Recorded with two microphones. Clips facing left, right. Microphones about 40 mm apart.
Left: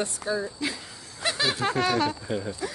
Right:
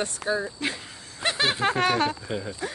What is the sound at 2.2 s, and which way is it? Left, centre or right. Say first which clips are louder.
Speech: left 1 dB; centre.